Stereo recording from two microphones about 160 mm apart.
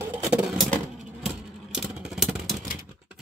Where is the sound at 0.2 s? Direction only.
Centre (ahead or behind).